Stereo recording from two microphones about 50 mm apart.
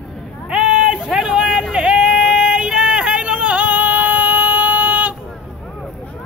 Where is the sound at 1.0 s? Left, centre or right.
Centre; by 5.1 s right.